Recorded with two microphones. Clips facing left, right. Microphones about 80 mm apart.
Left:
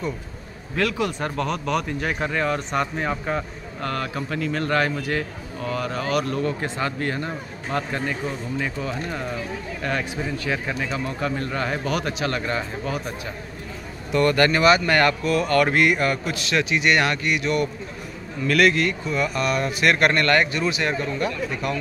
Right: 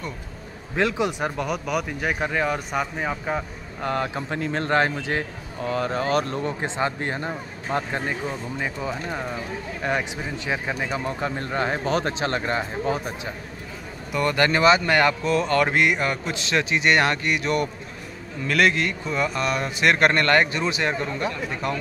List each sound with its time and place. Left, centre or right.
0.7 s speech: right; by 3.4 s centre
3.8 s a man's voice: right
14.1 s a man's voice: centre
15.2 s a man's voice: right
18.5 s a man's voice: right